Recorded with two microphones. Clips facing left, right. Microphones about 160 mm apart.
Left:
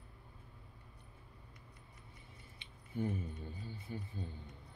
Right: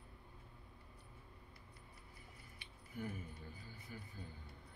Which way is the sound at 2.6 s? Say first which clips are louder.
Left 8 dB; 25° left (ahead or behind).